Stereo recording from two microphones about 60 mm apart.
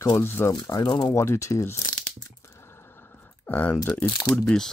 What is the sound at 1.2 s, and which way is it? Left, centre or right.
Speech, left.